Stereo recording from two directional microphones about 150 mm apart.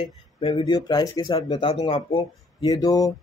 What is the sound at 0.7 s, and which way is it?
Speech, 25° left (ahead or behind).